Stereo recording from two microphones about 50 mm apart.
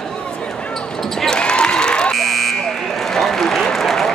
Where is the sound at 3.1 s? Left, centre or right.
Centre.